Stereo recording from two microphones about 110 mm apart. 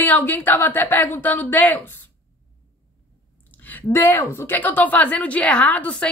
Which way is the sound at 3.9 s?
25° left (ahead or behind).